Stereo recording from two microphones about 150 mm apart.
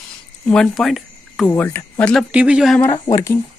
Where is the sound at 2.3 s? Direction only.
5° right (ahead or behind).